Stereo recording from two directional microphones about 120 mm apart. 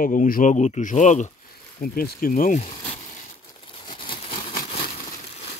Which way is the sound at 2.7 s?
45° left (ahead or behind).